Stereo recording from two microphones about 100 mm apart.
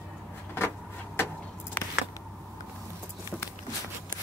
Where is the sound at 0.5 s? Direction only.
25° left (ahead or behind).